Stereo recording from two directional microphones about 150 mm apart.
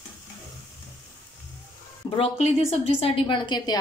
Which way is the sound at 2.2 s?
45° left (ahead or behind).